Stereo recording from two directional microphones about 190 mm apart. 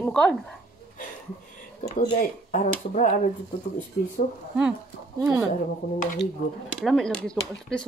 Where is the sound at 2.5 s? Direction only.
40° left (ahead or behind).